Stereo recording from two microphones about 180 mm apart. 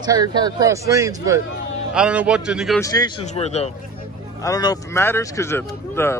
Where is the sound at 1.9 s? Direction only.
5° right (ahead or behind).